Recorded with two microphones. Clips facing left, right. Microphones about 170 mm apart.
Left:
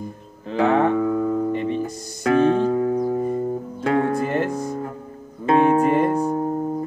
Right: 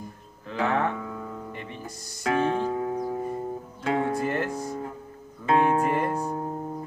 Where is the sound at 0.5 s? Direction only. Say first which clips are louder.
Left 8 dB; 25° left (ahead or behind).